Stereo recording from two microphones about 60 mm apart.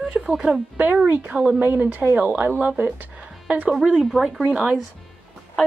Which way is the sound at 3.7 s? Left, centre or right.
Centre.